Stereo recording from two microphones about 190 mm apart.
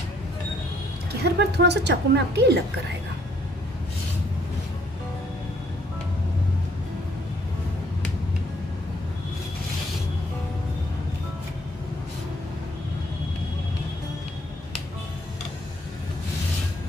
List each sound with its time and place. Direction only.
1.2 s a woman's voice: 60° right (ahead or behind)